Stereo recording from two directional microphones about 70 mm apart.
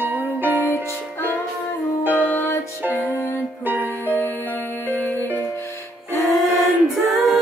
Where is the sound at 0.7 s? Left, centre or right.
Left.